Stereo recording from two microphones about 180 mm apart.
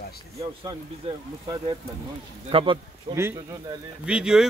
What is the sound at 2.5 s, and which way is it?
Speech, 30° right (ahead or behind).